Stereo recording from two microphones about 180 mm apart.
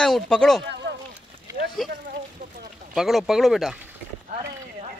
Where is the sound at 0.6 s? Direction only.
75° right (ahead or behind).